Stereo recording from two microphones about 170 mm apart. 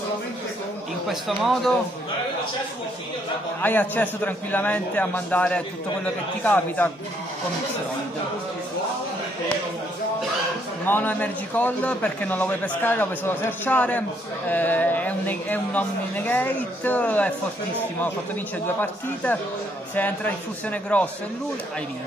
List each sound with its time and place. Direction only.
1.0 s speech: centre (ahead or behind)
3.6 s a man's voice: 10° left (ahead or behind)
10.9 s a man's voice: 10° left (ahead or behind)
20.0 s a man's voice: 10° left (ahead or behind)